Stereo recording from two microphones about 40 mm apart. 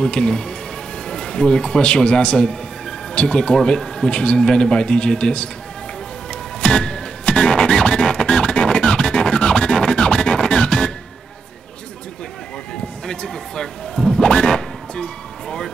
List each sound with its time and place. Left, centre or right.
0.0 s speech: centre
1.0 s music: centre
1.8 s speech: left
6.6 s music: centre
13.0 s a sound: centre
14.2 s music: centre